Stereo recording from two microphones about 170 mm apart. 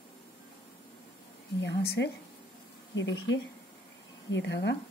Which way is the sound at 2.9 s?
90° left.